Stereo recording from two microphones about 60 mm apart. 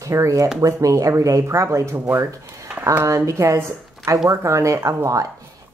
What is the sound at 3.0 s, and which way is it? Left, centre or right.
Speech, right.